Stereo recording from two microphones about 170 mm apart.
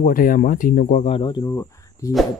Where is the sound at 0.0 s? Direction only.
55° left (ahead or behind); by 1.3 s 35° left (ahead or behind).